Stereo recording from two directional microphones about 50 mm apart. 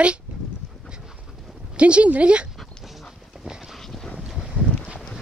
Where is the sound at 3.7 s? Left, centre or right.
Centre.